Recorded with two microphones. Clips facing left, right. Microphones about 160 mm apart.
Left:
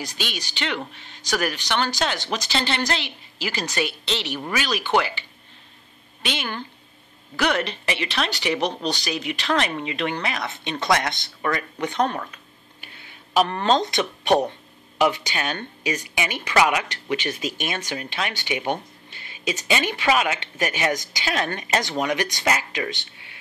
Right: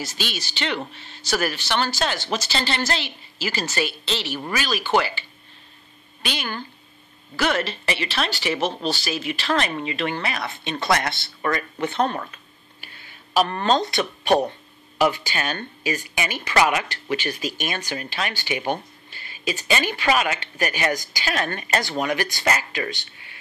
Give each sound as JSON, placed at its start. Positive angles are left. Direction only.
{"t": 0.0, "sound": "a woman's voice", "side_deg": 15}
{"t": 6.2, "sound": "a woman's voice", "side_deg": 20}
{"t": 13.4, "sound": "a woman's voice", "side_deg": 15}
{"t": 14.0, "sound": "speech", "side_deg": -10}
{"t": 15.0, "sound": "speech", "side_deg": 20}